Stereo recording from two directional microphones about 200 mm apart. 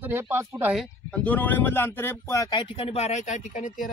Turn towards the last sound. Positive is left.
turn(degrees=40)  # may be behind; listen again after turning